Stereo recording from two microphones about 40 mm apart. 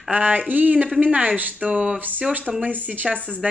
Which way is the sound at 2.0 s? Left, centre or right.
Right.